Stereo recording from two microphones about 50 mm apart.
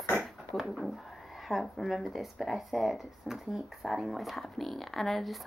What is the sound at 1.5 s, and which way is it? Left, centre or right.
Speech, centre.